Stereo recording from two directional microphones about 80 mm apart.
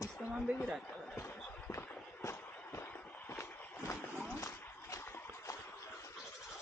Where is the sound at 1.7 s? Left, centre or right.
Left.